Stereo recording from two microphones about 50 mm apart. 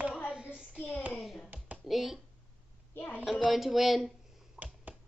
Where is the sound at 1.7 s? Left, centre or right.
Centre.